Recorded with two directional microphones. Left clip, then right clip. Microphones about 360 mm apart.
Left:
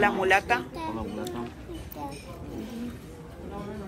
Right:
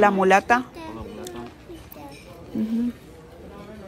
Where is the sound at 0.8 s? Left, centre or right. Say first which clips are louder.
Left 3 dB; centre.